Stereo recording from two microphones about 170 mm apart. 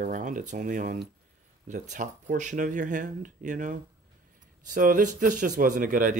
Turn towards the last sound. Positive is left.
turn(degrees=-50)  # may be behind; listen again after turning